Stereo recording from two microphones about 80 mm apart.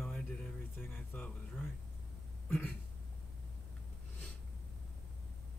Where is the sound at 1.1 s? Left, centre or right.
Left.